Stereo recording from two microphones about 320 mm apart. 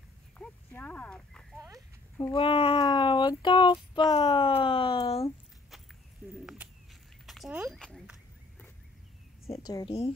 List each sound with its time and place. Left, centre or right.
0.4 s horse: centre
2.1 s speech: centre
7.2 s a sound: centre
9.5 s speech: centre